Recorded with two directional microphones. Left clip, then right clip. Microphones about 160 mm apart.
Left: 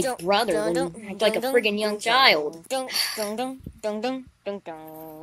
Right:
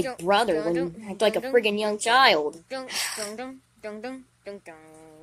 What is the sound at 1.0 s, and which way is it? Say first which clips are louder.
Speech: left 1 dB; 5° right (ahead or behind).